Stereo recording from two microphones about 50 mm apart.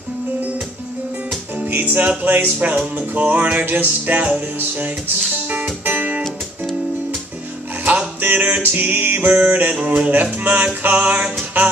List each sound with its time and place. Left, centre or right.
1.7 s music: right
6.2 s music: centre
8.2 s music: right